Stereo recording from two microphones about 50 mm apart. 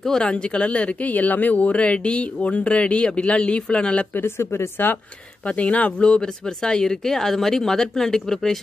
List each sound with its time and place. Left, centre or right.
0.2 s speech: left
4.4 s speech: left
5.4 s speech: left; by 8.5 s centre